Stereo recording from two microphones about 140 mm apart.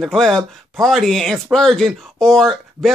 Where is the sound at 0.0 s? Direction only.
5° left (ahead or behind).